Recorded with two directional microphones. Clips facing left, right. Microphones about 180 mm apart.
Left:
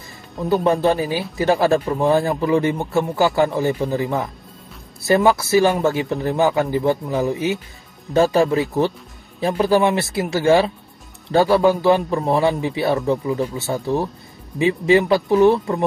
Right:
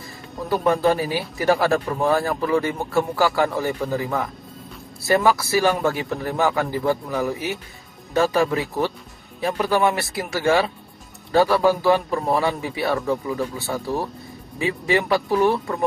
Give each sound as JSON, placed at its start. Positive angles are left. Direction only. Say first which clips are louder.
{"t": 0.5, "sound": "speech", "louder": "left 2 dB", "side_deg": 25}